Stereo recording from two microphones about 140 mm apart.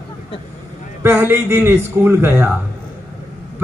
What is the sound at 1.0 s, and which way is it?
A man's voice, 15° right (ahead or behind).